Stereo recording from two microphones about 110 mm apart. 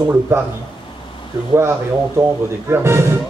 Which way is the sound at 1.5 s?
25° right (ahead or behind).